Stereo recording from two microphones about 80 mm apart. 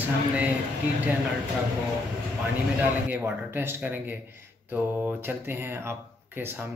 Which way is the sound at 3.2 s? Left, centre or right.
Right.